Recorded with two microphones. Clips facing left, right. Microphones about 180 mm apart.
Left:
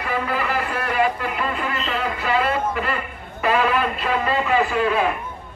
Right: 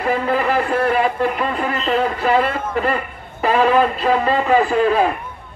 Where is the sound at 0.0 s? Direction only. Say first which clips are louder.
Right 6 dB; 30° right (ahead or behind).